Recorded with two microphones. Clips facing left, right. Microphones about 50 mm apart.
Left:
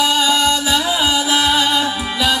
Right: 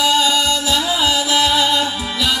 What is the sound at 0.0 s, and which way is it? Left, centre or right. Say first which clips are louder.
Music: left 1 dB; centre.